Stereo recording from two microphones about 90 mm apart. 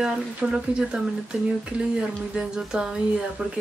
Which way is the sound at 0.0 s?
10° right (ahead or behind).